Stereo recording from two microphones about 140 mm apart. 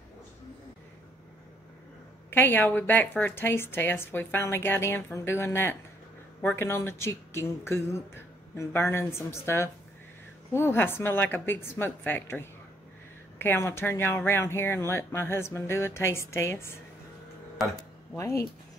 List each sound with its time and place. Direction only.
2.3 s a woman's voice: 15° left (ahead or behind)
18.1 s speech: 20° left (ahead or behind)